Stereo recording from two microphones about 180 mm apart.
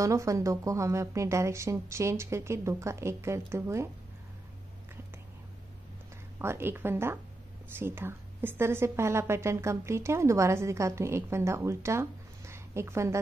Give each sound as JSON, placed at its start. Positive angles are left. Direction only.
{"t": 0.0, "sound": "a woman's voice", "side_deg": -15}
{"t": 6.4, "sound": "a woman's voice", "side_deg": -15}